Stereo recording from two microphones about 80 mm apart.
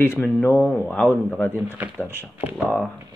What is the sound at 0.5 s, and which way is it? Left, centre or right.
Speech, centre.